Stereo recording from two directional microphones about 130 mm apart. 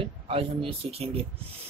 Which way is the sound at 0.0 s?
45° right (ahead or behind).